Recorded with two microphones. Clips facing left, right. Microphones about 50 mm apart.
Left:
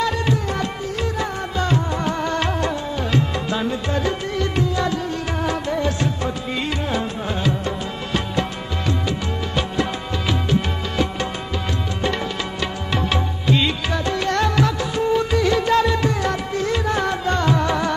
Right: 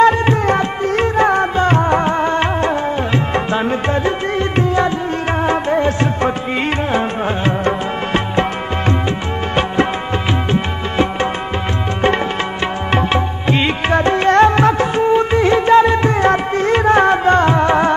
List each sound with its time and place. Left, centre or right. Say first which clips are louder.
0.0 s music: right 10 dB; right
2.0 s music: right 6 dB; right
5.4 s music of bollywood: right 7 dB; right
6.9 s music: right 7 dB; right
10.5 s music: right 4 dB; right
12.9 s music: right 6 dB; right